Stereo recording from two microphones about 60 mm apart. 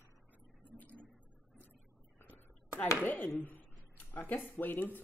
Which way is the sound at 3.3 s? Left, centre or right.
Left.